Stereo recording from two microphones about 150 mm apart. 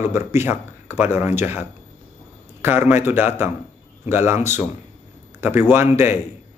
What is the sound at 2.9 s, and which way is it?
Speech, 15° right (ahead or behind).